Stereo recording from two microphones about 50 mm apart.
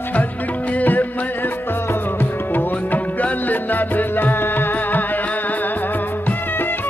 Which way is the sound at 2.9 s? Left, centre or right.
Left.